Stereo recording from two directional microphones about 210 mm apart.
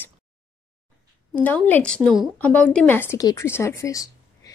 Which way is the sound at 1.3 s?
5° left (ahead or behind).